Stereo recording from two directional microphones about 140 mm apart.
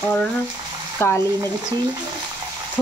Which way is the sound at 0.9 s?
15° left (ahead or behind).